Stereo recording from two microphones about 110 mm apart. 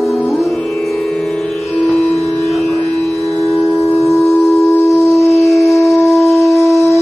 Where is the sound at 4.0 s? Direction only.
Centre (ahead or behind).